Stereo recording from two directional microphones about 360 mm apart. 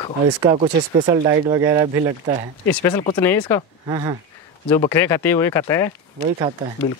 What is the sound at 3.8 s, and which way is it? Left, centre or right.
Speech, centre.